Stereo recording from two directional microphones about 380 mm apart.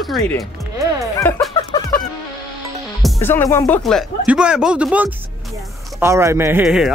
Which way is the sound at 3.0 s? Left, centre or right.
Centre.